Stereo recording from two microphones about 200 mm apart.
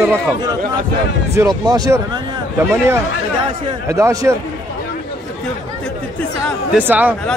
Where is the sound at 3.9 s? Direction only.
15° right (ahead or behind).